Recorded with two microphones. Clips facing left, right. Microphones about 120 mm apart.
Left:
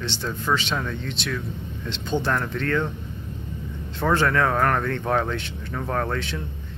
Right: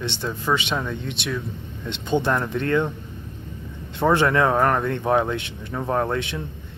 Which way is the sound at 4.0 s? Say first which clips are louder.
Right 3 dB; 20° right (ahead or behind).